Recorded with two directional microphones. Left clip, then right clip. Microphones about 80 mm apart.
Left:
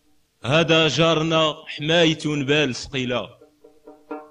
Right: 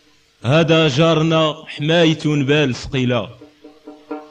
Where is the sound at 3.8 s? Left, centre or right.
Right.